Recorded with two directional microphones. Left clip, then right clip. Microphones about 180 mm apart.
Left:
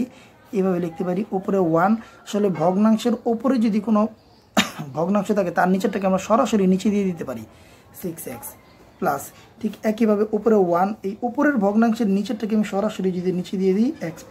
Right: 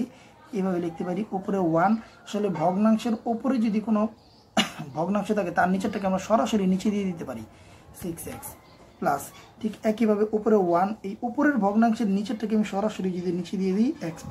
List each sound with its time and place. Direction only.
0.5 s speech: 35° left (ahead or behind)
9.0 s speech: 30° left (ahead or behind)